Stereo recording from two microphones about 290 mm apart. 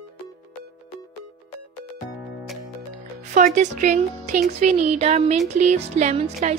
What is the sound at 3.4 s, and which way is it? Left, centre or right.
Speech, right.